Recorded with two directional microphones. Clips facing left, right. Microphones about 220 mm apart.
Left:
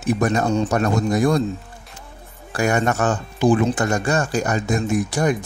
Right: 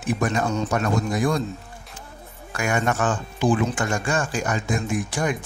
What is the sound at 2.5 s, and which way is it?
Speech, 40° left (ahead or behind).